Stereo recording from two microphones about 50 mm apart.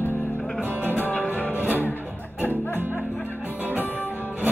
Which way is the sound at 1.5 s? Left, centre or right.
Right.